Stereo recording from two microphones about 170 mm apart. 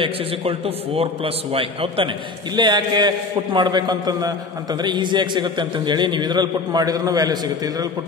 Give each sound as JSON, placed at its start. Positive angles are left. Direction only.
{"t": 0.0, "sound": "a man's voice", "side_deg": -35}